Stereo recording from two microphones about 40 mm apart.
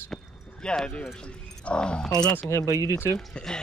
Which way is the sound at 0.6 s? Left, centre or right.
Centre.